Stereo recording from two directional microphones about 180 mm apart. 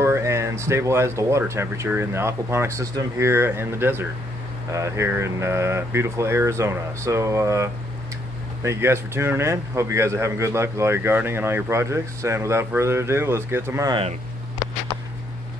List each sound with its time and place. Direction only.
0.0 s a man's voice: 15° right (ahead or behind)